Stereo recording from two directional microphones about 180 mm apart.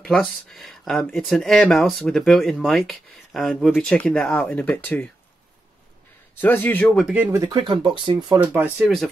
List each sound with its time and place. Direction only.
0.0 s speech: centre (ahead or behind)
6.4 s a man's voice: 10° left (ahead or behind)
7.1 s speech: 10° right (ahead or behind)
7.4 s speech: 25° right (ahead or behind)
8.4 s speech: 5° right (ahead or behind)